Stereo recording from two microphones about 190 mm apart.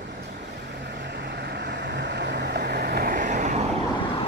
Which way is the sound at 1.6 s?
65° right (ahead or behind).